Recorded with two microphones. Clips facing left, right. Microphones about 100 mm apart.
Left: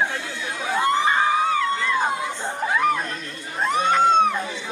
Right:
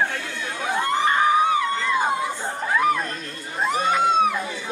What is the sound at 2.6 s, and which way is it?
Chuckle, centre (ahead or behind).